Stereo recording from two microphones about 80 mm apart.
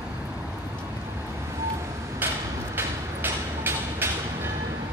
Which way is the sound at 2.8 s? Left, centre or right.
Right.